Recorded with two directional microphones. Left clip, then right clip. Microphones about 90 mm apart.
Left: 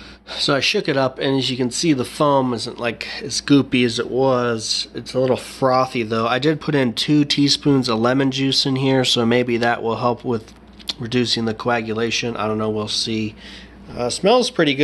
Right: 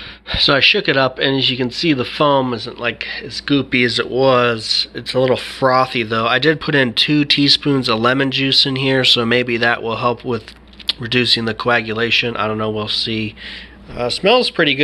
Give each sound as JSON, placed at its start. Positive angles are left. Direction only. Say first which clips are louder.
{"t": 0.3, "sound": "speech", "louder": "right 6 dB", "side_deg": 5}
{"t": 2.5, "sound": "speech", "louder": "right 2 dB", "side_deg": 35}
{"t": 3.1, "sound": "speech", "louder": "left 1 dB", "side_deg": 60}
{"t": 3.7, "sound": "speech", "louder": "right 3 dB", "side_deg": 35}
{"t": 10.9, "sound": "speech", "louder": "right 6 dB", "side_deg": 25}